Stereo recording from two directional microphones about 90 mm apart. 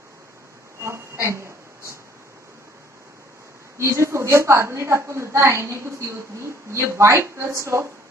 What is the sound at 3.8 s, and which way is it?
A woman's voice, 30° right (ahead or behind).